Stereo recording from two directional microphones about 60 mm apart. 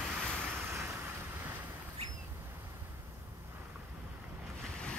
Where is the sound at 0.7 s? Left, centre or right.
Right.